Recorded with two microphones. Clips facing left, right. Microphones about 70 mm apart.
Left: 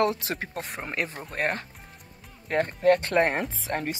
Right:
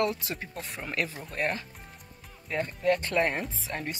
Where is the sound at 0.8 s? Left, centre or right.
Left.